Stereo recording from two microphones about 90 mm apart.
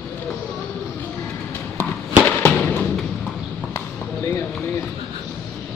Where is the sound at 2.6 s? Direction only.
20° left (ahead or behind).